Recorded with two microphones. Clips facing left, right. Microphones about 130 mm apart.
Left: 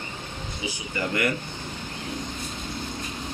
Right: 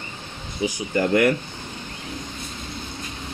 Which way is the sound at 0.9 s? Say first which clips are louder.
Right 8 dB; 55° right (ahead or behind).